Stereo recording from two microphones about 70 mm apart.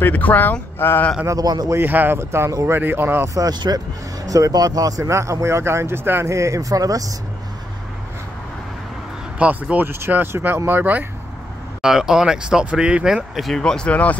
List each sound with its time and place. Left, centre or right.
0.0 s speech: left
1.2 s speech: right
1.9 s speech: right
2.1 s speech: right
3.3 s speech: right
4.3 s speech: right
9.4 s speech: centre
11.8 s speech: centre
13.6 s speech: centre